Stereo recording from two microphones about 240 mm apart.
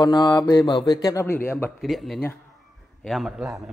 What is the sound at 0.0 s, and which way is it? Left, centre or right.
A man's voice, centre.